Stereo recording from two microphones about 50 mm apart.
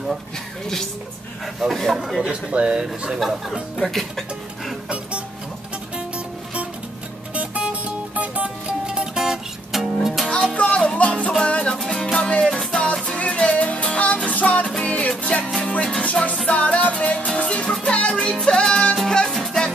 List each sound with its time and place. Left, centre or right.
1.6 s speech: centre
2.5 s speech: right
3.2 s speech: centre
4.8 s music: right
7.3 s music: right; by 9.8 s centre
10.5 s music: left
11.8 s music: centre
16.0 s music: left; by 19.7 s centre